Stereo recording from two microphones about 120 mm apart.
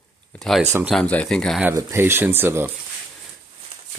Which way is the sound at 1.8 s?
20° right (ahead or behind).